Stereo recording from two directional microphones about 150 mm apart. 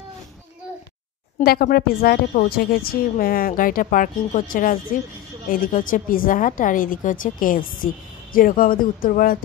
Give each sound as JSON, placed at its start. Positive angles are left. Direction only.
{"t": 1.4, "sound": "a woman's voice", "side_deg": 90}